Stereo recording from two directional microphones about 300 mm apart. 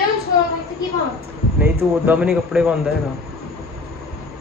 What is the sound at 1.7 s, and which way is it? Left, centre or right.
Speech, centre.